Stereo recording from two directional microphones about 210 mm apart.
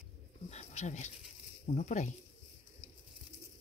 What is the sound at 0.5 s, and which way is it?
Speech, 30° left (ahead or behind).